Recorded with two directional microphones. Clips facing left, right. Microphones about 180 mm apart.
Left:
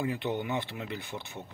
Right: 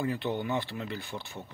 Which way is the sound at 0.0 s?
15° left (ahead or behind).